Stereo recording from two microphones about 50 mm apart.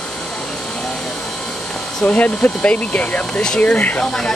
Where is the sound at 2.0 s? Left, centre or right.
Left.